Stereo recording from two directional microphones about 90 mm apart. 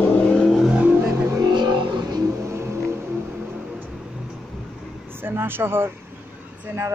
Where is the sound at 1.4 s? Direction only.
50° right (ahead or behind).